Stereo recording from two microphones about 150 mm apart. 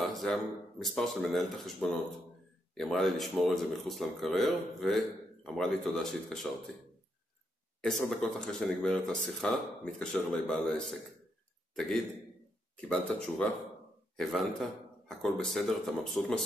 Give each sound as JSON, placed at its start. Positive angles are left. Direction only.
{"t": 0.0, "sound": "speech", "side_deg": 0}
{"t": 7.8, "sound": "a man's voice", "side_deg": 5}